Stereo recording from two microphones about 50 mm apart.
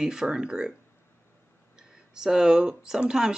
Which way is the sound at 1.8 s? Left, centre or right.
Centre.